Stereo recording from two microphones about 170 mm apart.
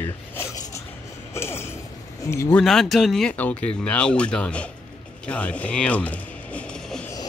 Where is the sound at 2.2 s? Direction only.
15° left (ahead or behind).